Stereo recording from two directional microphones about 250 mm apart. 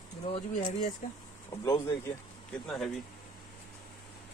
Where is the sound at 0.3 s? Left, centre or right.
Left.